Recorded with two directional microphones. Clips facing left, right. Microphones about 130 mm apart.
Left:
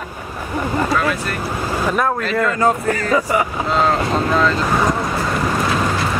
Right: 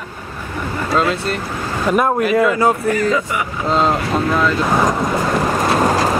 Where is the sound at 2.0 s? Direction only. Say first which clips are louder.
Right 7 dB; 15° right (ahead or behind).